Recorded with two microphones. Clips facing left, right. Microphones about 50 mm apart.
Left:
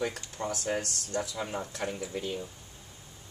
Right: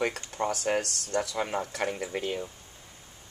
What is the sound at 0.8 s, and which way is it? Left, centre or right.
Speech, right.